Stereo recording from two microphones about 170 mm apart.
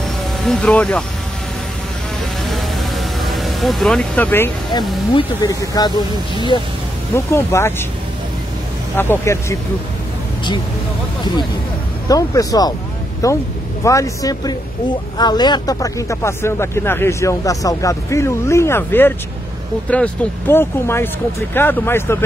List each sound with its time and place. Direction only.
0.4 s speech: 5° left (ahead or behind)
2.4 s vehicle: centre (ahead or behind)
5.1 s speech: 20° left (ahead or behind)
7.2 s speech: 15° left (ahead or behind)
8.9 s speech: 15° left (ahead or behind)
12.1 s speech: 20° left (ahead or behind)